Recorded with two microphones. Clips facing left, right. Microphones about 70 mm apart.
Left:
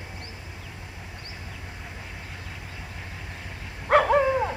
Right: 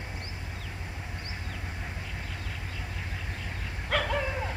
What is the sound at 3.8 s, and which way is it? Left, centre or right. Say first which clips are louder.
Dog: left 11 dB; left.